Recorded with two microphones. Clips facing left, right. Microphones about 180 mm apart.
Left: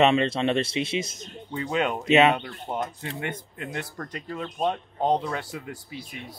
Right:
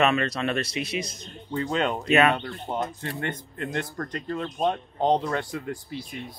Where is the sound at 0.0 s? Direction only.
25° left (ahead or behind).